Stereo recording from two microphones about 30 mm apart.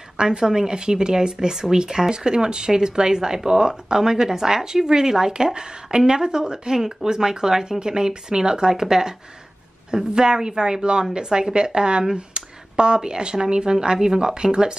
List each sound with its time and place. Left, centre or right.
0.2 s speech: right